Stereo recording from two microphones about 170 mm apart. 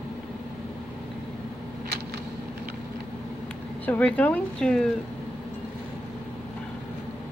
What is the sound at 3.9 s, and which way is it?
Speech, 10° left (ahead or behind).